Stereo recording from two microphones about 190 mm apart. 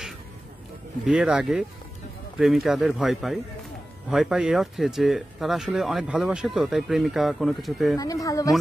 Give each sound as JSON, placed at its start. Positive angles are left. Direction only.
{"t": 1.0, "sound": "speech", "side_deg": -5}
{"t": 8.0, "sound": "speech", "side_deg": 20}